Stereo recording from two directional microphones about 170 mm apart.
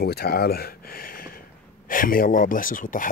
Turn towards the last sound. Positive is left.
turn(degrees=50)  # may be behind; listen again after turning